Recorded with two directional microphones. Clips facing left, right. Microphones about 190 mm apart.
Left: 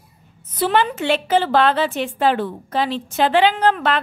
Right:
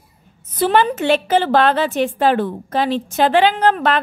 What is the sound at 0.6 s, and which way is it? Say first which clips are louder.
A woman's voice: right 3 dB; 40° right (ahead or behind).